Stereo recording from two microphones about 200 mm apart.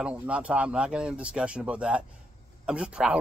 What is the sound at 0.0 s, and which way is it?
Speech, 5° right (ahead or behind).